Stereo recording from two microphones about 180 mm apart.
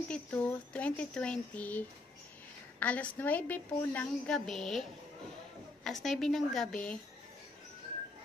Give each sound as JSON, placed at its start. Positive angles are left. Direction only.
{"t": 0.1, "sound": "a woman's voice", "side_deg": 10}
{"t": 5.9, "sound": "a woman's voice", "side_deg": 0}